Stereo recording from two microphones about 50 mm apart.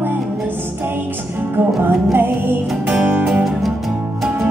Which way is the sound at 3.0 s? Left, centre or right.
Right.